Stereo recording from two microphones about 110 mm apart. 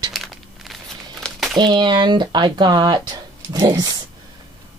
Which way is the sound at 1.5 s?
40° right (ahead or behind).